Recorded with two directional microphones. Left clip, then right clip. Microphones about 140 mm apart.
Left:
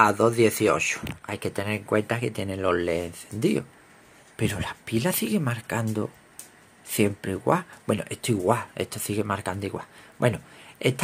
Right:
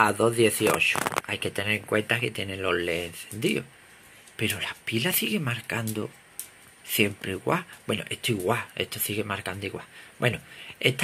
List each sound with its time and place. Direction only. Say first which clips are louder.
0.0 s speech: left 2 dB; 5° left (ahead or behind)